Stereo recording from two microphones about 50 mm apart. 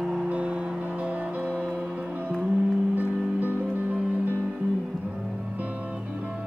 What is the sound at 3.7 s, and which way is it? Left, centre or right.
Music, right.